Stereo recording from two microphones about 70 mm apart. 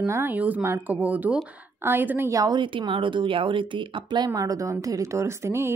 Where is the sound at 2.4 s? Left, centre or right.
Right.